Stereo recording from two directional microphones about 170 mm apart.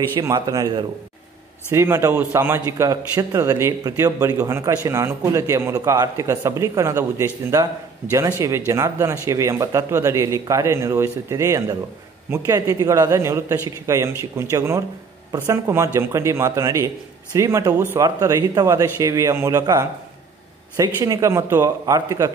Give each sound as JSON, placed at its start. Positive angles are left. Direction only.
{"t": 0.1, "sound": "a man's voice", "side_deg": -20}